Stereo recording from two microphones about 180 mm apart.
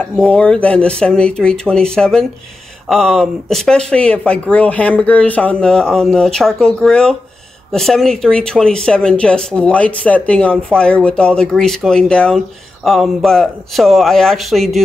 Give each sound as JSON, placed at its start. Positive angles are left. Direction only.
{"t": 0.0, "sound": "speech", "side_deg": 5}